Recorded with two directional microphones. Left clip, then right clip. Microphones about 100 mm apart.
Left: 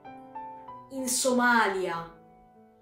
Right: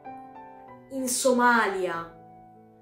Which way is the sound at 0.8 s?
5° right (ahead or behind).